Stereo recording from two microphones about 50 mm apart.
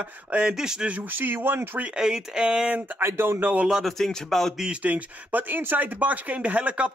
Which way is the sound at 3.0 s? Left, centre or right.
Right.